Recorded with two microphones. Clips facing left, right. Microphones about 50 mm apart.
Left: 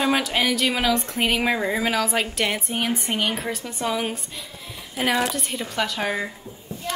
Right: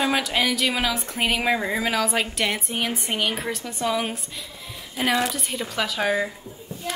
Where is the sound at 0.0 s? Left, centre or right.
Centre.